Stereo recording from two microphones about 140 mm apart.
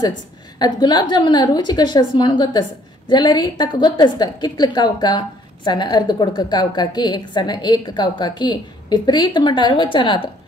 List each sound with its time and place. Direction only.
0.6 s a woman's voice: 30° left (ahead or behind)